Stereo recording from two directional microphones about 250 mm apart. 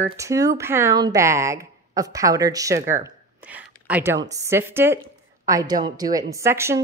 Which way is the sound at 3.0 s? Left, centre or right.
Centre.